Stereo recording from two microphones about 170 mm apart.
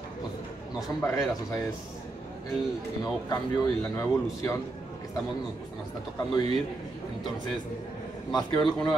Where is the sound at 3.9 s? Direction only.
15° left (ahead or behind).